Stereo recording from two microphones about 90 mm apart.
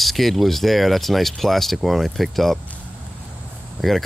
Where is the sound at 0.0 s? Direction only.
Centre (ahead or behind).